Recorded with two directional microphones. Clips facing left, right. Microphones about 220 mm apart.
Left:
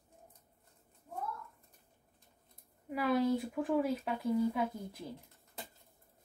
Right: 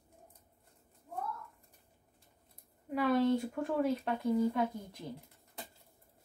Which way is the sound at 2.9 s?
5° left (ahead or behind).